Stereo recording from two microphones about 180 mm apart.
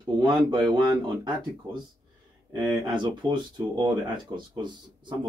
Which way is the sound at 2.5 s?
10° right (ahead or behind).